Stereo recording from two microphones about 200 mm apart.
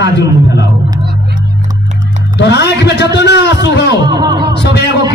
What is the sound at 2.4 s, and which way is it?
A man's voice, 55° left (ahead or behind).